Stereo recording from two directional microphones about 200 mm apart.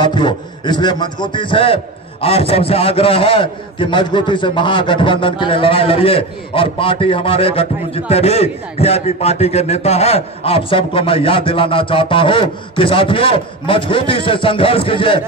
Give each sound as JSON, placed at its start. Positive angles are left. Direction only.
{"t": 0.0, "sound": "a man's voice", "side_deg": 25}